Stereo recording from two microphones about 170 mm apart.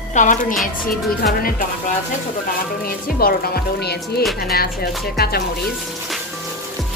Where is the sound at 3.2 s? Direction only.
60° left (ahead or behind).